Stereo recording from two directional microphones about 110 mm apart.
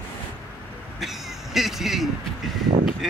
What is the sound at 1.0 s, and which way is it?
Speech, 5° right (ahead or behind).